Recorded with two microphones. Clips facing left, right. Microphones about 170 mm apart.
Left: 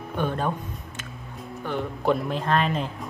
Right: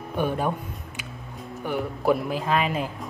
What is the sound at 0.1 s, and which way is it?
Speech, 10° right (ahead or behind).